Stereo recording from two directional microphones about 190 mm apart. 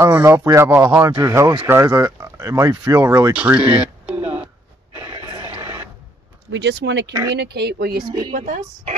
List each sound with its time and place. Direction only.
0.0 s speech: 15° right (ahead or behind)
3.3 s speech: 5° right (ahead or behind)
3.8 s a sound: 5° right (ahead or behind)
5.1 s a sound: 30° right (ahead or behind)
6.5 s speech: 65° right (ahead or behind)
7.1 s speech: 15° right (ahead or behind)
7.3 s speech: 60° right (ahead or behind)
8.0 s speech: 20° right (ahead or behind)
8.3 s speech: 45° right (ahead or behind)